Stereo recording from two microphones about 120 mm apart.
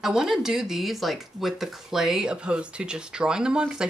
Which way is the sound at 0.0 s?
5° right (ahead or behind).